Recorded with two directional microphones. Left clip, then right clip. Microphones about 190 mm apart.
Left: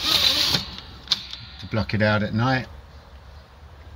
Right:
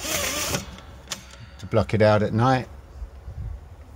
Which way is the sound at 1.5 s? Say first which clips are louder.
Right 6 dB; 25° right (ahead or behind).